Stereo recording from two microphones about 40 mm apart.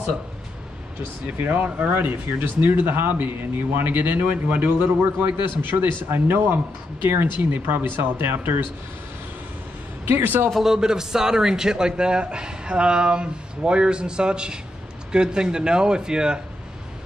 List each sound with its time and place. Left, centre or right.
1.4 s speech: right
10.0 s speech: right
10.6 s a man's voice: centre